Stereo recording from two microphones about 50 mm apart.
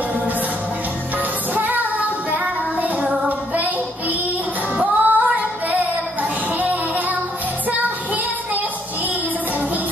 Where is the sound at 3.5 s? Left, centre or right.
Right.